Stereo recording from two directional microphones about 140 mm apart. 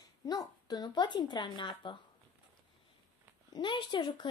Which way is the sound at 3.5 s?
35° left (ahead or behind).